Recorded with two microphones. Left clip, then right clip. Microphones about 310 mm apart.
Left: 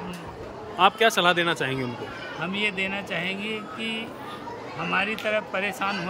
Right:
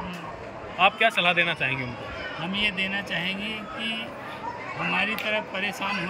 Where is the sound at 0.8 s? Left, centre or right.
Centre.